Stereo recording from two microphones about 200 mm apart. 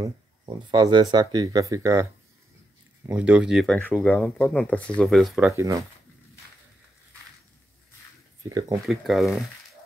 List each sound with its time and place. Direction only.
0.0 s speech: 25° right (ahead or behind)
3.1 s speech: 5° right (ahead or behind)
5.5 s speech: 15° right (ahead or behind)
8.5 s speech: 20° right (ahead or behind)
8.8 s speech: centre (ahead or behind)